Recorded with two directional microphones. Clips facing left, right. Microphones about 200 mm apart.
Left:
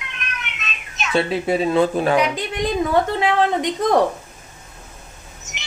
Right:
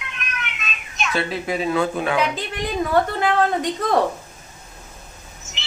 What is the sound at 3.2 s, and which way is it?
Speech, 20° left (ahead or behind).